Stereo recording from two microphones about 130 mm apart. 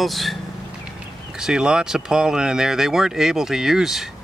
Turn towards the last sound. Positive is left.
turn(degrees=-5)  # may be behind; listen again after turning